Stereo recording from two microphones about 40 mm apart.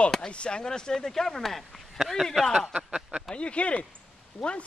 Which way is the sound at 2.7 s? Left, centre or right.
Right.